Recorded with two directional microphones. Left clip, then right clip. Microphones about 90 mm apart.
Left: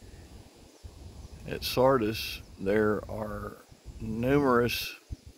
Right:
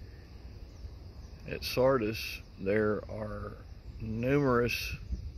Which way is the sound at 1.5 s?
65° left (ahead or behind).